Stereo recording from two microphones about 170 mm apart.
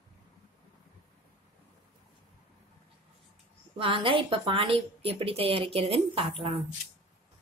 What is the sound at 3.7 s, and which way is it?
A woman's voice, 30° right (ahead or behind).